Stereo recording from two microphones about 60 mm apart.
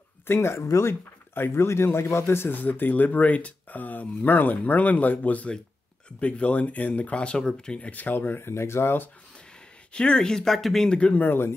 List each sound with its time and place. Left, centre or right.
0.3 s speech: left
1.3 s a man's voice: left; by 7.9 s centre
7.9 s speech: left
9.9 s speech: centre
11.1 s speech: left